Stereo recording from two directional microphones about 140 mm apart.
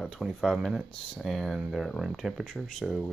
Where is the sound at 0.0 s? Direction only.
Centre (ahead or behind).